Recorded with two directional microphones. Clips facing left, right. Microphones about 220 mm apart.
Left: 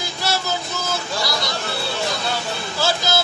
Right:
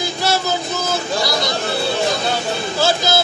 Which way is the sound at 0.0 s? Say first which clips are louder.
Right 5 dB; 20° right (ahead or behind).